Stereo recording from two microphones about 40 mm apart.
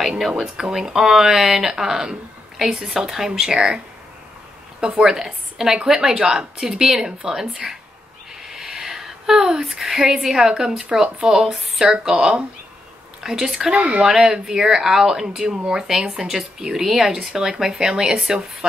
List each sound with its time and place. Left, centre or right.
0.0 s a sound: centre
0.4 s a woman's voice: centre
5.0 s speech: centre
8.5 s a sound: centre
10.5 s speech: centre
11.4 s speech: centre
13.7 s speech: right
14.0 s speech: centre